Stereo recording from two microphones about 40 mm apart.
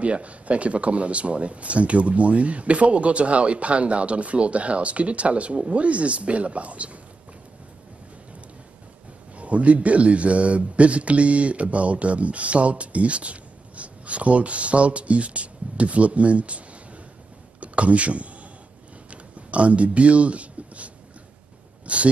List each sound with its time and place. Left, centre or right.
0.0 s speech: right
9.4 s speech: right
19.5 s speech: right